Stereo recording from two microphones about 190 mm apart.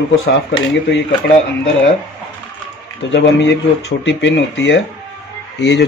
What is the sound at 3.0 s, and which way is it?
Speech, 70° left (ahead or behind).